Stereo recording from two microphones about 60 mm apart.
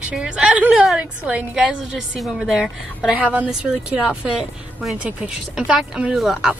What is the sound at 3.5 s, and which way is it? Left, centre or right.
A woman's voice, centre.